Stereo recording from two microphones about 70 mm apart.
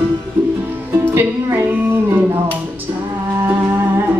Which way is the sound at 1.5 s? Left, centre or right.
Right.